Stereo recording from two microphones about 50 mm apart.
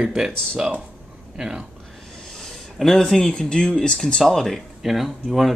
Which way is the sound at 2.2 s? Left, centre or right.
Centre.